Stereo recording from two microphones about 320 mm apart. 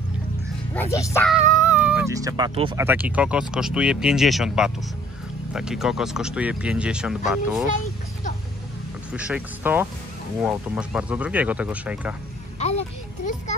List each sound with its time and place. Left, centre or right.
0.9 s speech: centre
9.1 s speech: centre
12.5 s speech: centre